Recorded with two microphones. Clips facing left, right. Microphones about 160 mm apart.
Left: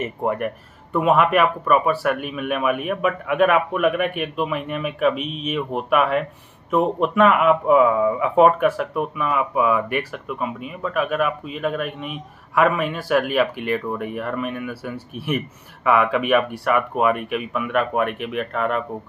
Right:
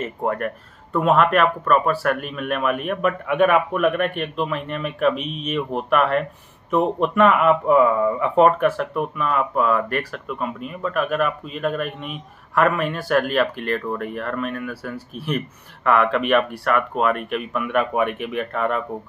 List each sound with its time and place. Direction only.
0.0 s speech: 10° left (ahead or behind)